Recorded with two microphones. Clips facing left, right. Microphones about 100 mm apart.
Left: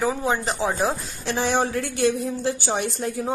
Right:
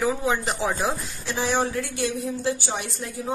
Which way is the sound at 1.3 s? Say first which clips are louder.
Left 2 dB; 55° left (ahead or behind).